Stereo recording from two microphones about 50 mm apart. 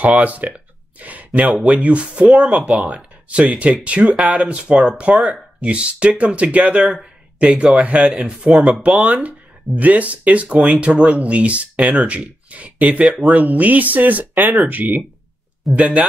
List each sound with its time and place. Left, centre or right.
0.0 s speech: right